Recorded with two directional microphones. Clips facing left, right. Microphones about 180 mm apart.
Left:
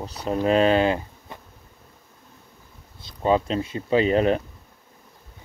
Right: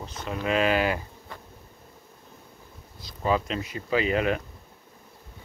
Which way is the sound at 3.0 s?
25° left (ahead or behind).